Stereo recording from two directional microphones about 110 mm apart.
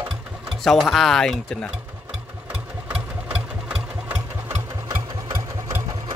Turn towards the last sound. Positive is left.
turn(degrees=-30)  # may be behind; listen again after turning